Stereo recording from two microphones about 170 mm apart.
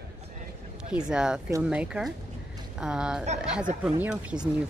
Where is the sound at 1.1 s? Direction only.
5° right (ahead or behind).